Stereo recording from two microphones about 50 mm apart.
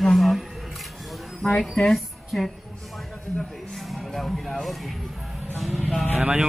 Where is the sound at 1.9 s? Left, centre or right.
Centre.